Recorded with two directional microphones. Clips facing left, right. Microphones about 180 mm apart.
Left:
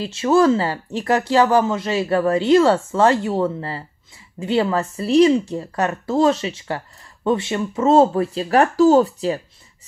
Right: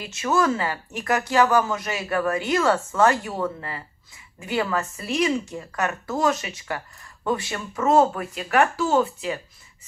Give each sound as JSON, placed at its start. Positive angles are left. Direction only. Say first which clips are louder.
{"t": 0.0, "sound": "speech", "louder": "left 7 dB", "side_deg": 30}